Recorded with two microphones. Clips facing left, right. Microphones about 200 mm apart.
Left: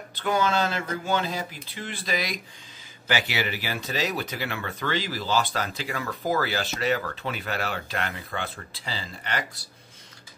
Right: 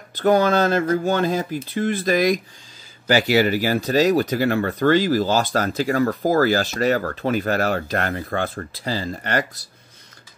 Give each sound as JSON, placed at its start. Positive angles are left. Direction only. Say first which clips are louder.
{"t": 0.1, "sound": "speech", "louder": "right 8 dB", "side_deg": -45}